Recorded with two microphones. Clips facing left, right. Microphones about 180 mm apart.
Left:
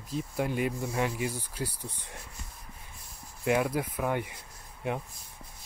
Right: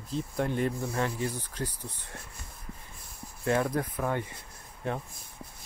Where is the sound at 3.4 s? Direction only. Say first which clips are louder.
Even; 10° left (ahead or behind).